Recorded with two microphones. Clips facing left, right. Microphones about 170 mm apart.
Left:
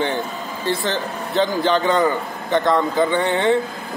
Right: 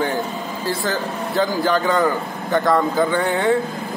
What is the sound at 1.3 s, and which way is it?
Speech, 20° left (ahead or behind).